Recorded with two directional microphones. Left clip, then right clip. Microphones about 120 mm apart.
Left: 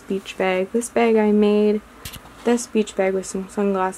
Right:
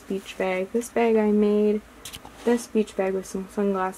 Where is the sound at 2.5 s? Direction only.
15° left (ahead or behind).